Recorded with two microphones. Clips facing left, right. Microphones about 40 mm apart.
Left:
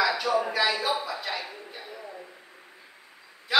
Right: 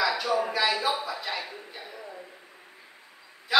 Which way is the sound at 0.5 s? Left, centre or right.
Centre.